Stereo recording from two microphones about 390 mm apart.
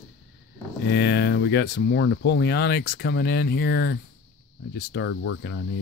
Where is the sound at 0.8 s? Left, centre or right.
Left.